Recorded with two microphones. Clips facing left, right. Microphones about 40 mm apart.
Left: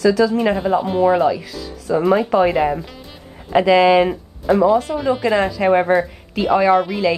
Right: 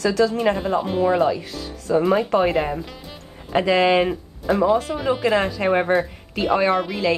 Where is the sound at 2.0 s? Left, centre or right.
Centre.